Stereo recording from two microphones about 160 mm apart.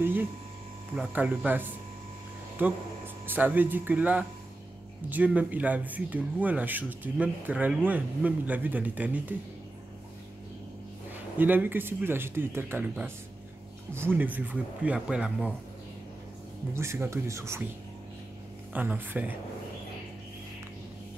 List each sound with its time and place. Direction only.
0.0 s speech: 15° right (ahead or behind)
11.1 s speech: 10° right (ahead or behind)
16.7 s speech: 15° right (ahead or behind)
18.7 s speech: 10° right (ahead or behind)